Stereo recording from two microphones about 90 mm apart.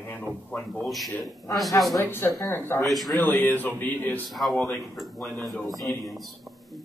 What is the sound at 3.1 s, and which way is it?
A man's voice, 20° left (ahead or behind).